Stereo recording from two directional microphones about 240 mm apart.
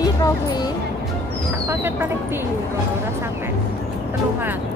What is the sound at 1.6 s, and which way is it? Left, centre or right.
Speech, centre.